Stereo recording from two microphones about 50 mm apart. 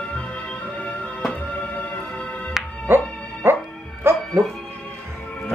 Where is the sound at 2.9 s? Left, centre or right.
Right.